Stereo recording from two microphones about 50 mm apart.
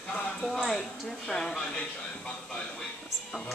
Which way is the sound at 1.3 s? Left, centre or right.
Centre.